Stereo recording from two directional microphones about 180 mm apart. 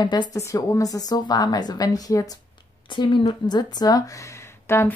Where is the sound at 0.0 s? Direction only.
25° left (ahead or behind).